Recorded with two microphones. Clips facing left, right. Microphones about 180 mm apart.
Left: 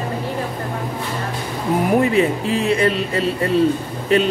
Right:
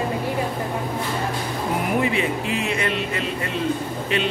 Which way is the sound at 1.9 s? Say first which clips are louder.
Left 7 dB; 40° left (ahead or behind).